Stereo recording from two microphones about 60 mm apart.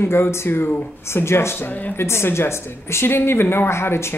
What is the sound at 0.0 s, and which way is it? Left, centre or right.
A woman's voice, left.